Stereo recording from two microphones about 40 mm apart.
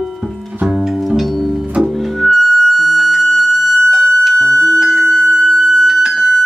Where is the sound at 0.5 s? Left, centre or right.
Centre.